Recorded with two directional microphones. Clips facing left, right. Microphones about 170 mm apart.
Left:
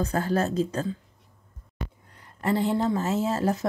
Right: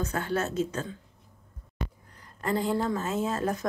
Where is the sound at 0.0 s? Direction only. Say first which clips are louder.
Left 4 dB; 35° left (ahead or behind).